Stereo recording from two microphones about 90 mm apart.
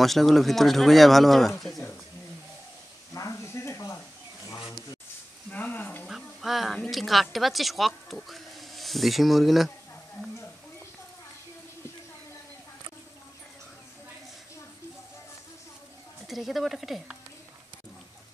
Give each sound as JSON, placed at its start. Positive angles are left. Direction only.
{"t": 0.0, "sound": "speech", "side_deg": 0}
{"t": 3.2, "sound": "stir", "side_deg": 35}
{"t": 4.5, "sound": "a sound", "side_deg": 50}
{"t": 5.5, "sound": "frying", "side_deg": 15}
{"t": 6.0, "sound": "speech", "side_deg": -5}
{"t": 16.3, "sound": "speech", "side_deg": 0}